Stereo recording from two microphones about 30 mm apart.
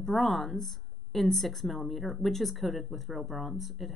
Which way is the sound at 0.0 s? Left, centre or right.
Centre.